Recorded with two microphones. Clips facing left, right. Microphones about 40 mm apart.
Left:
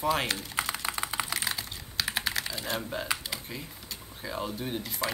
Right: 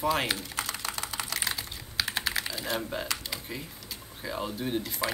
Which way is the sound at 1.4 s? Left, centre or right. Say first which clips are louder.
Even; centre.